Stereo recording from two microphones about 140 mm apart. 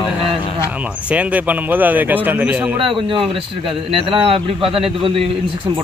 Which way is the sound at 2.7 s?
40° right (ahead or behind).